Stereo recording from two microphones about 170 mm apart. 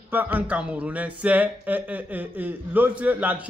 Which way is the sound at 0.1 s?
10° right (ahead or behind).